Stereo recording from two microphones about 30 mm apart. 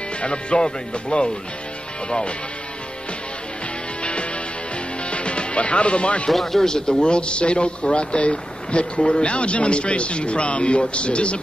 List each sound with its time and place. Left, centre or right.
0.2 s a man's voice: left
4.0 s music: left
6.4 s speech: centre
7.0 s a man's voice: left